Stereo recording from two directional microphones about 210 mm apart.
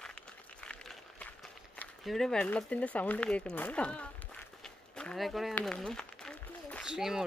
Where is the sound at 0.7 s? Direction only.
5° left (ahead or behind).